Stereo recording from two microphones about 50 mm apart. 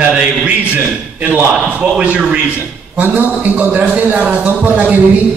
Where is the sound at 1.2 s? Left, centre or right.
Right.